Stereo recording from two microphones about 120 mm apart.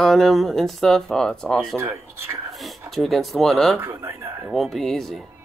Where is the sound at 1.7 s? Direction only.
20° right (ahead or behind).